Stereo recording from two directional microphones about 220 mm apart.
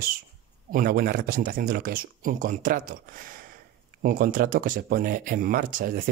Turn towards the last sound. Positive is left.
turn(degrees=-40)  # may be behind; listen again after turning